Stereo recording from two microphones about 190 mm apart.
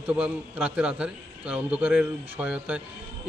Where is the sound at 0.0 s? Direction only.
5° right (ahead or behind).